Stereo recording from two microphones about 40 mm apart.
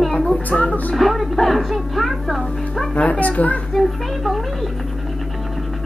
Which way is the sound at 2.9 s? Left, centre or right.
Left.